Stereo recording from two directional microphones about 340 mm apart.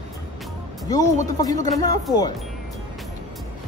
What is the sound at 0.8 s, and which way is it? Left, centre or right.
Speech, centre.